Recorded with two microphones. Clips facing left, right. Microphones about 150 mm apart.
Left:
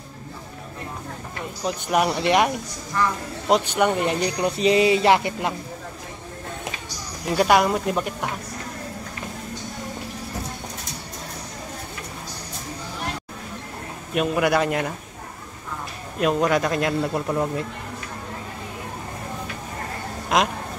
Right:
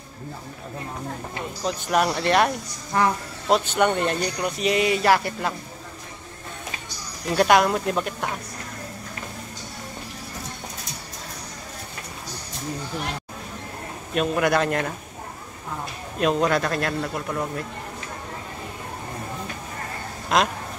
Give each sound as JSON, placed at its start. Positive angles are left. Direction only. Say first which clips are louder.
{"t": 1.6, "sound": "speech", "louder": "left 1 dB", "side_deg": 10}
{"t": 4.4, "sound": "a sound", "louder": "left 6 dB", "side_deg": 30}
{"t": 7.3, "sound": "speech", "louder": "even", "side_deg": 5}
{"t": 14.1, "sound": "speech", "louder": "left 1 dB", "side_deg": 5}
{"t": 16.2, "sound": "speech", "louder": "left 1 dB", "side_deg": 5}